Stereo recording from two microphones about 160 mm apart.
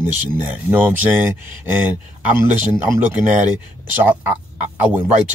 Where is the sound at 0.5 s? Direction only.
10° right (ahead or behind).